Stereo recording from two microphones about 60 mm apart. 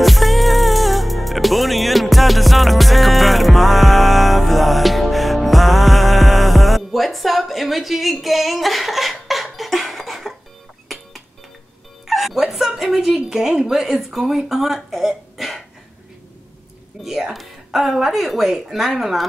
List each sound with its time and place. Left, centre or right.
0.0 s music: centre
12.1 s a woman's voice: centre
17.0 s a woman's voice: centre